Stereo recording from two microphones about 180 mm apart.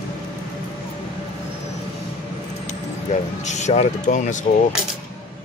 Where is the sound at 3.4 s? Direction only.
40° left (ahead or behind).